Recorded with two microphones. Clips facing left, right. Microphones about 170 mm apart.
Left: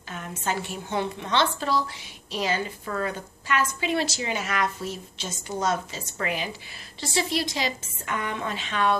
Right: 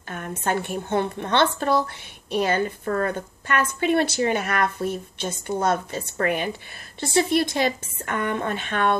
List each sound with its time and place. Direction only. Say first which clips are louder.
0.4 s a woman's voice: right 5 dB; 55° right (ahead or behind)